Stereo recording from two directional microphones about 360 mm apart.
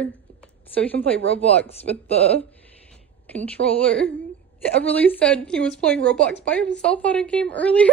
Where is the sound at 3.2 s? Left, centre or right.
Centre.